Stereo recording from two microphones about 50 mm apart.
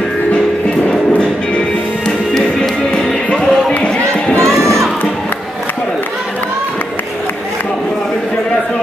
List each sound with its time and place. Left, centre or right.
0.8 s music: centre
2.0 s music: centre
4.4 s crowd: centre